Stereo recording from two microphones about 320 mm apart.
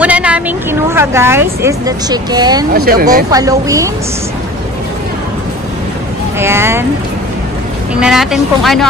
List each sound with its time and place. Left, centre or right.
0.0 s speech: centre
2.7 s speech: right
3.3 s speech: centre
6.4 s speech: centre
8.0 s speech: centre